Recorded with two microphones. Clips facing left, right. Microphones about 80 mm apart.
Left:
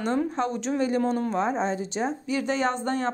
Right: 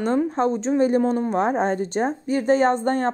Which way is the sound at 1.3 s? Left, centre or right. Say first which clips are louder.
Right 5 dB; right.